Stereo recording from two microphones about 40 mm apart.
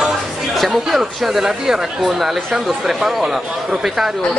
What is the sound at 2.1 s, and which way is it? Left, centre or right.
Speech, centre.